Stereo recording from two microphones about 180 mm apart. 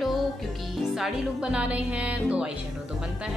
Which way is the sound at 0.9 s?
5° right (ahead or behind).